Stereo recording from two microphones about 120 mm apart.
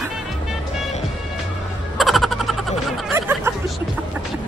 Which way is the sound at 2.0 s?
Centre (ahead or behind).